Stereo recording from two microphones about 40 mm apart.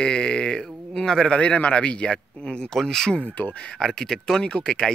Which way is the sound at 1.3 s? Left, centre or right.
Left.